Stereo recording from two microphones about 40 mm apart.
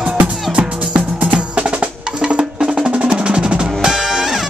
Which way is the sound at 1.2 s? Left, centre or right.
Right.